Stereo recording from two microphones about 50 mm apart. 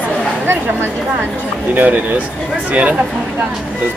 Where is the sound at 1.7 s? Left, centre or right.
Right.